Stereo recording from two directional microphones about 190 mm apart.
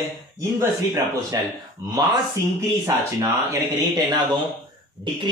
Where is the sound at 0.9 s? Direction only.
15° right (ahead or behind).